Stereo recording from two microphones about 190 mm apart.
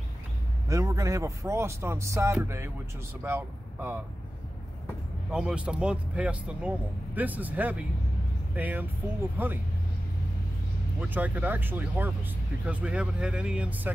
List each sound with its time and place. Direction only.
0.7 s speech: 20° right (ahead or behind)
5.3 s speech: 5° right (ahead or behind)
11.0 s speech: 10° right (ahead or behind)